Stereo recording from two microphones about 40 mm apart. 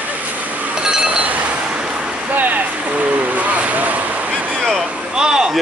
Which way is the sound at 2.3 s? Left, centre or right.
Right.